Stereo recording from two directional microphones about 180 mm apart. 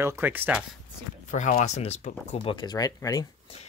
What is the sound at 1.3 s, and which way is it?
Speech, 45° left (ahead or behind).